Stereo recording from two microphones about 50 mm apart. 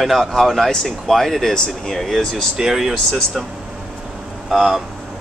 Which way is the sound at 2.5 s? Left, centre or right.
Centre.